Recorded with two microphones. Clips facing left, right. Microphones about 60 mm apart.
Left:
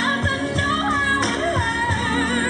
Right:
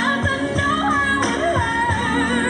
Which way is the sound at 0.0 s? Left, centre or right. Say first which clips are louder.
Right 2 dB; centre.